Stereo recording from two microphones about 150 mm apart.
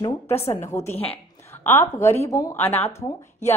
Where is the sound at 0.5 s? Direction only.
20° left (ahead or behind).